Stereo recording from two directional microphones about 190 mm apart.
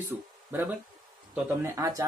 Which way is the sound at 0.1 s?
10° right (ahead or behind).